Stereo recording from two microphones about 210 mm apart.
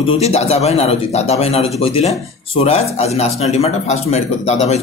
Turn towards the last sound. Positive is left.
turn(degrees=30)  # may be behind; listen again after turning